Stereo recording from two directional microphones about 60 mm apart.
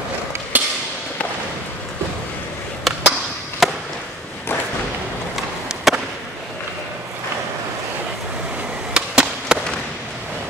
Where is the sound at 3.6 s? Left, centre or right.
Centre.